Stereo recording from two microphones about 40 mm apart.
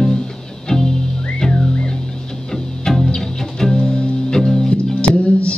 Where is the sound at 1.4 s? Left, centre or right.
Left.